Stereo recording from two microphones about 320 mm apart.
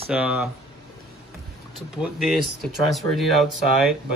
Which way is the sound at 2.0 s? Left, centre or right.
Centre.